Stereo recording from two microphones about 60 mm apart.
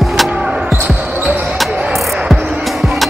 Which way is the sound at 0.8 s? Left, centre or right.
Right.